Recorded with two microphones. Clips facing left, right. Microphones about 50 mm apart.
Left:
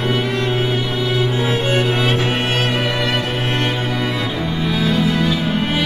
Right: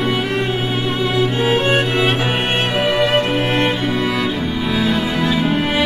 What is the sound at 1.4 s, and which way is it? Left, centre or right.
Music, right.